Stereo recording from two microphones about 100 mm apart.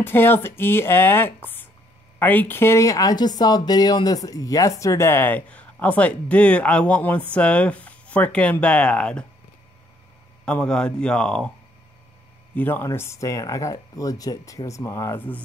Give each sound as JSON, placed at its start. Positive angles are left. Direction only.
{"t": 0.0, "sound": "speech", "side_deg": 20}
{"t": 10.4, "sound": "speech", "side_deg": 10}
{"t": 12.5, "sound": "speech", "side_deg": 20}